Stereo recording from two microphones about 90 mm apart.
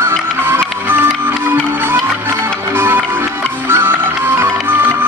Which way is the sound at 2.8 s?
25° right (ahead or behind).